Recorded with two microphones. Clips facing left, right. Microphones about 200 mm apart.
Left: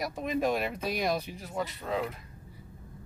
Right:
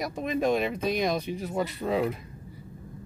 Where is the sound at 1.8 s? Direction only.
10° right (ahead or behind).